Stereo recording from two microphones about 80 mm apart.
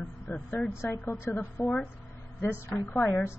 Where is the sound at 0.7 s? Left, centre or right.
Left.